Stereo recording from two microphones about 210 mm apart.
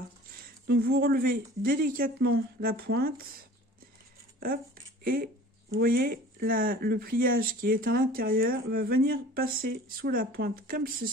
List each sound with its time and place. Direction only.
0.7 s speech: 50° right (ahead or behind)
5.0 s speech: 45° right (ahead or behind)